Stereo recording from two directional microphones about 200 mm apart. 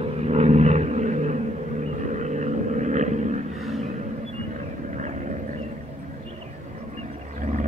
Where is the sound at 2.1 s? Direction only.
35° right (ahead or behind).